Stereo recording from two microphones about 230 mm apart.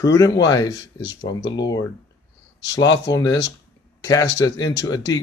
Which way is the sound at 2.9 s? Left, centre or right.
Centre.